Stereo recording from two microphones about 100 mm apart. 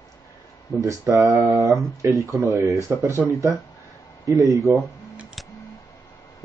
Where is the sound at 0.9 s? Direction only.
35° right (ahead or behind).